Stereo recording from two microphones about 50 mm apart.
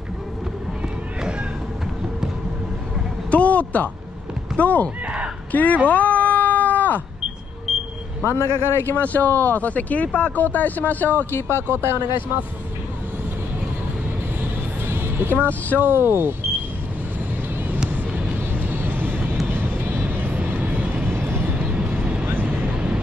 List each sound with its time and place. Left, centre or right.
3.3 s speech: left
5.9 s a sound: left
7.7 s vehicle: centre
8.2 s speech: left
8.8 s speech: left
11.7 s speech: right
14.9 s music: right
15.8 s speech: right
18.3 s vehicle: right
21.5 s vehicle: right
22.2 s vehicle: right